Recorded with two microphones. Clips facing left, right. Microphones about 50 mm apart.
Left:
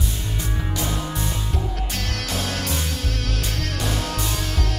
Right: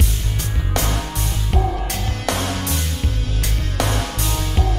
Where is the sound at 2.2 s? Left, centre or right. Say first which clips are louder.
Right 8 dB; right.